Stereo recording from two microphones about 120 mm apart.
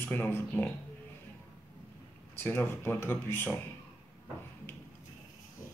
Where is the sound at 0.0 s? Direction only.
15° left (ahead or behind).